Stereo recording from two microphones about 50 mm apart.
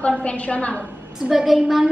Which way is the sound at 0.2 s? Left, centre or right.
Left.